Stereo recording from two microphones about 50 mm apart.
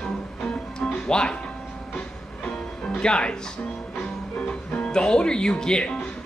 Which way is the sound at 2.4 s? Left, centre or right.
Centre.